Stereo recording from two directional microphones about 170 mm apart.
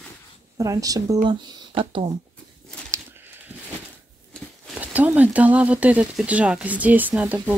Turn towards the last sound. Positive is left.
turn(degrees=-10)  # may be behind; listen again after turning